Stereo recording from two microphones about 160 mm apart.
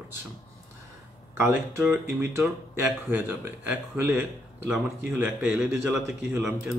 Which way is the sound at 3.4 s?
10° right (ahead or behind).